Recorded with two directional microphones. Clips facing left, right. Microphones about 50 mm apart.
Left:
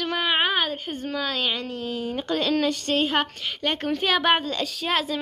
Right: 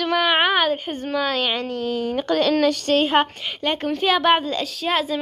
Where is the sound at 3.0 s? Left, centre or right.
Right.